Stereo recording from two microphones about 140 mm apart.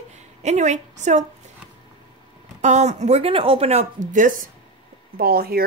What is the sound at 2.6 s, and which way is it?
Speech, 55° right (ahead or behind).